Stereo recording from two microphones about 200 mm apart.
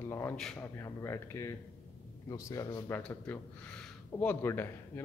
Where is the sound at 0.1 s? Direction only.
15° left (ahead or behind).